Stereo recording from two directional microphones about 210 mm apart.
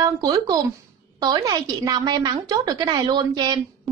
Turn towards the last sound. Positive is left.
turn(degrees=-20)  # may be behind; listen again after turning